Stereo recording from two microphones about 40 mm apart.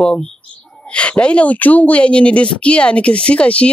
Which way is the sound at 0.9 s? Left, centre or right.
Left.